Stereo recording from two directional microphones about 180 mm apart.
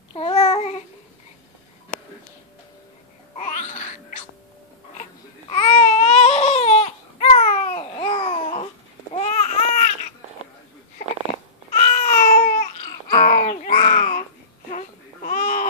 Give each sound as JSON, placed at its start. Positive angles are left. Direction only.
{"t": 0.1, "sound": "babbling", "side_deg": 35}
{"t": 3.3, "sound": "babbling", "side_deg": 45}
{"t": 5.5, "sound": "baby cry", "side_deg": 35}
{"t": 9.1, "sound": "babbling", "side_deg": 40}
{"t": 11.7, "sound": "babbling", "side_deg": 45}
{"t": 13.2, "sound": "a sound", "side_deg": 50}